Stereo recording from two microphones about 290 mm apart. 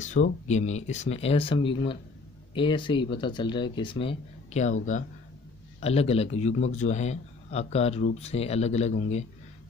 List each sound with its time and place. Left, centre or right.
0.0 s a man's voice: left
5.8 s a man's voice: left